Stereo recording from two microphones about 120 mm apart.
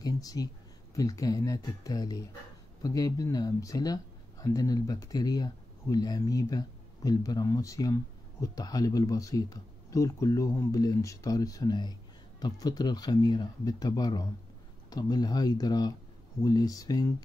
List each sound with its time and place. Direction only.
0.0 s speech: 30° left (ahead or behind)